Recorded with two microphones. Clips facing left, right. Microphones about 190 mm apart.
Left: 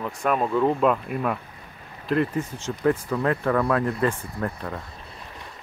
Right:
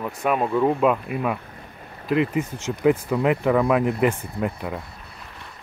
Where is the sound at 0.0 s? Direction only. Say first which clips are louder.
Right 1 dB; 5° right (ahead or behind).